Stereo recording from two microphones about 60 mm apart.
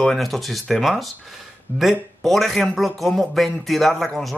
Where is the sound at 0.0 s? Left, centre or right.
Centre.